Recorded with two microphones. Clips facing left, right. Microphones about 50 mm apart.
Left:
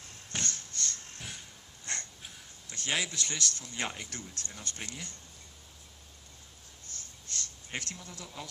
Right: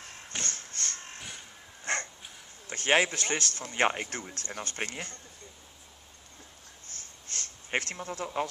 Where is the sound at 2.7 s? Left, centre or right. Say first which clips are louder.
Right 9 dB; right.